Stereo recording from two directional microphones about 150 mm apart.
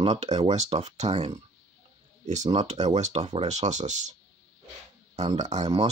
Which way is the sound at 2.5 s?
40° right (ahead or behind).